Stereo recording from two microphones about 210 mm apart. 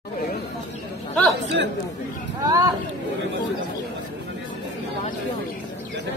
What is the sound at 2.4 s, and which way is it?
Speech, 20° right (ahead or behind).